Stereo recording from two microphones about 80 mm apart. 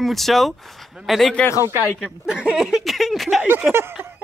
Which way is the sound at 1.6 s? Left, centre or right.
Right.